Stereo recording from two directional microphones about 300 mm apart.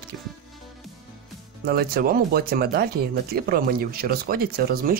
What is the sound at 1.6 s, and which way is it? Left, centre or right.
Speech, right.